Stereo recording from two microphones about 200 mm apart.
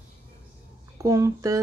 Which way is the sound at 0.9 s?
15° right (ahead or behind).